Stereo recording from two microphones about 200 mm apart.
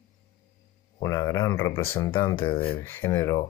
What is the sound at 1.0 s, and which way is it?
Speech, 15° left (ahead or behind).